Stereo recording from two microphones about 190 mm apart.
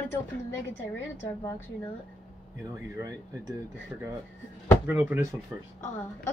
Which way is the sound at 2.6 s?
20° right (ahead or behind).